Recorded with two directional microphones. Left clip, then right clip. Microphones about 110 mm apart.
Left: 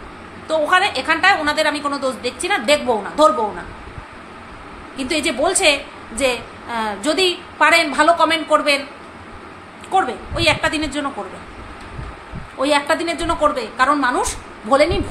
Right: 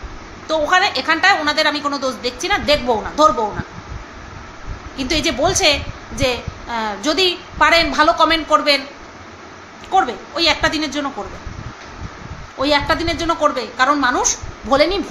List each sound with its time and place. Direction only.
0.5 s a woman's voice: 5° right (ahead or behind)
4.9 s a woman's voice: 15° right (ahead or behind)
9.8 s a woman's voice: 10° right (ahead or behind)
12.5 s a woman's voice: 10° right (ahead or behind)